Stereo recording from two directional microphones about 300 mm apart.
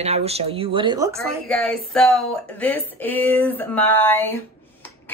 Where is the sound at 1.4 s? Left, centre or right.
Centre.